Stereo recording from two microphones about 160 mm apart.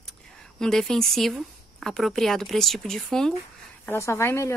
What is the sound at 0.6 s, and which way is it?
A woman's voice, 5° left (ahead or behind).